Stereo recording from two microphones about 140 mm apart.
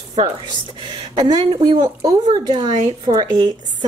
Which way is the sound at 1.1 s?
30° right (ahead or behind).